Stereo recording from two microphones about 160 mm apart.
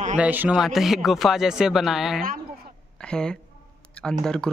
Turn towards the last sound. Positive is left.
turn(degrees=5)  # may be behind; listen again after turning